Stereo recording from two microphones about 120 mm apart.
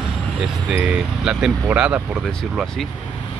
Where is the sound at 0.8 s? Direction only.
10° right (ahead or behind).